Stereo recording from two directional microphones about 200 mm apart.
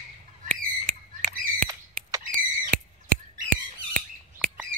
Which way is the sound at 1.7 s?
15° right (ahead or behind).